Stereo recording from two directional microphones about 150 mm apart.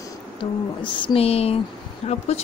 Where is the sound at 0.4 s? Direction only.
35° left (ahead or behind).